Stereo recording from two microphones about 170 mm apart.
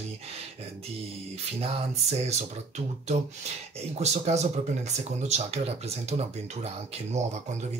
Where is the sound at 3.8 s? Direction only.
40° right (ahead or behind).